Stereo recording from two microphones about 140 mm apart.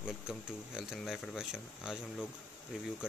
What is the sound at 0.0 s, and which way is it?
Speech, 5° right (ahead or behind).